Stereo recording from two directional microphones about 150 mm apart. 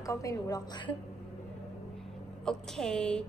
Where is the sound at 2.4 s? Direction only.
5° left (ahead or behind).